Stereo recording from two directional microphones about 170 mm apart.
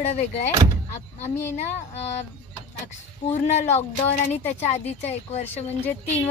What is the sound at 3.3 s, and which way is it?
A woman's voice, 45° left (ahead or behind).